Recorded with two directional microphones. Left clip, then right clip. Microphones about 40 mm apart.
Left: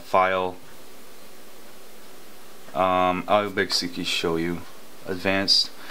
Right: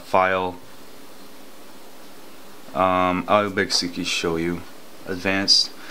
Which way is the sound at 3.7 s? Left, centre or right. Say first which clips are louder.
Right 2 dB; right.